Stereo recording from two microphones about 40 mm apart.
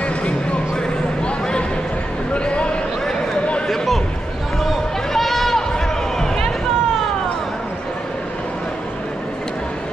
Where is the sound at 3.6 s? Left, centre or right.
Centre.